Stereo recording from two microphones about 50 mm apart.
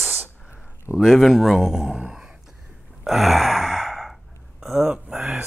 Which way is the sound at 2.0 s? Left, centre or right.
Centre.